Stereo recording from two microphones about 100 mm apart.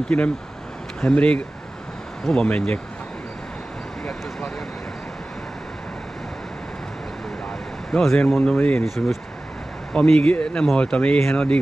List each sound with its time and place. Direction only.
0.1 s speech: 25° left (ahead or behind)
1.0 s speech: 10° left (ahead or behind)
7.9 s speech: 5° left (ahead or behind)
8.5 s speech: 15° left (ahead or behind)
8.8 s speech: centre (ahead or behind)